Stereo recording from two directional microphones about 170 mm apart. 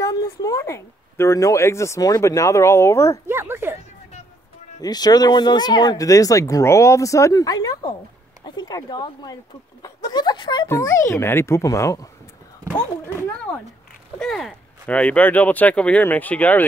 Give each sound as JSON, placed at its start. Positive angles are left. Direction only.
{"t": 0.0, "sound": "a woman's voice", "side_deg": 20}
{"t": 3.3, "sound": "a sound", "side_deg": -15}
{"t": 4.7, "sound": "speech", "side_deg": 25}
{"t": 14.2, "sound": "speech", "side_deg": 0}